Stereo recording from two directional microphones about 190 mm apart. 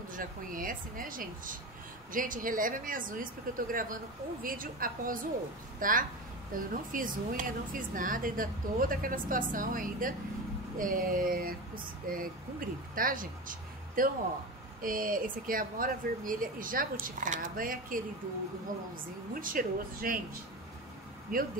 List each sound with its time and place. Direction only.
0.1 s a woman's voice: 45° right (ahead or behind)
19.4 s a woman's voice: 45° right (ahead or behind)
21.3 s a woman's voice: 50° right (ahead or behind)